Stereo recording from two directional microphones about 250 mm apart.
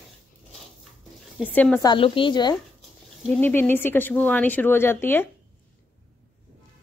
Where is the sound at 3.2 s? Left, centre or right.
Centre.